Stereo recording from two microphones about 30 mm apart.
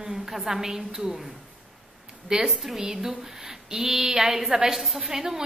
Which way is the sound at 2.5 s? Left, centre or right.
Centre.